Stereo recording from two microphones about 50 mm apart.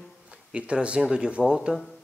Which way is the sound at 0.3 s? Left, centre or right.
Right.